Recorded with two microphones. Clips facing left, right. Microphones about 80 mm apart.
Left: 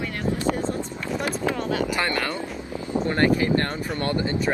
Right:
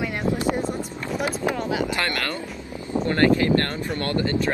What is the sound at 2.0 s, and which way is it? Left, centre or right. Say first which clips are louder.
Speech: left 1 dB; centre.